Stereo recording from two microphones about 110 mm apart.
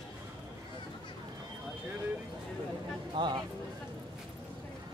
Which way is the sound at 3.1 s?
40° right (ahead or behind).